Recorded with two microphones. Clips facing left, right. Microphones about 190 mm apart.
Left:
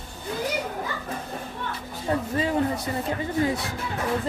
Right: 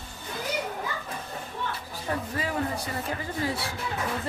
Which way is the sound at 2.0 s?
25° left (ahead or behind).